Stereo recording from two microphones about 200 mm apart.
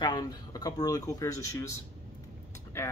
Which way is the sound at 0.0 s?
20° left (ahead or behind).